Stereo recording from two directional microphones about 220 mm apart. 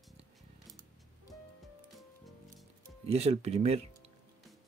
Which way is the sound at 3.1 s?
30° right (ahead or behind).